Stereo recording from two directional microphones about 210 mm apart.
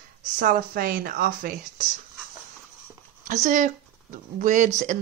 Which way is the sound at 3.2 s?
35° right (ahead or behind).